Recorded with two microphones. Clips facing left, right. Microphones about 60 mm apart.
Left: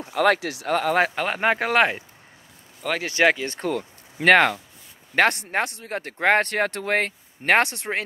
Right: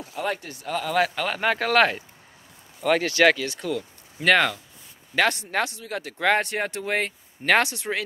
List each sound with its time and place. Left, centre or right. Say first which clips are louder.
0.1 s speech: left 9 dB; left
0.7 s speech: left 5 dB; left
0.9 s speech: left 2 dB; left
2.8 s speech: right 5 dB; centre
3.1 s speech: left 2 dB; left
3.4 s speech: left 2 dB; left
6.4 s speech: left 3 dB; left
7.4 s speech: left 1 dB; left